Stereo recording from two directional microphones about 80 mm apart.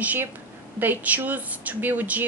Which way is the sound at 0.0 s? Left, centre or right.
Right.